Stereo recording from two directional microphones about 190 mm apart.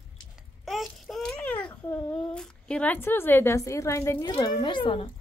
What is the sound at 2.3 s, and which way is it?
A woman's voice, 5° left (ahead or behind).